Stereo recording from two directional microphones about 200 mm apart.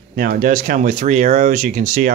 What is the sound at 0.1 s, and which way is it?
Speech, 45° right (ahead or behind).